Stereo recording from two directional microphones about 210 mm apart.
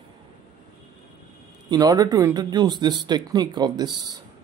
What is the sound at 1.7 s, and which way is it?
Speech, 20° right (ahead or behind).